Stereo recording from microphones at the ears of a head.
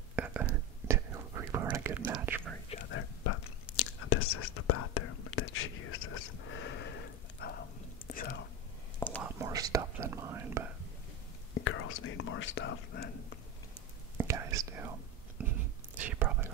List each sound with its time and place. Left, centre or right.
0.1 s whispering: right
2.7 s whispering: left
9.2 s whispering: right
11.5 s whispering: left
14.1 s whispering: right